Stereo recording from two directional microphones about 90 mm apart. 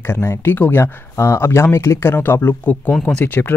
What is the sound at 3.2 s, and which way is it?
Speech, 20° left (ahead or behind).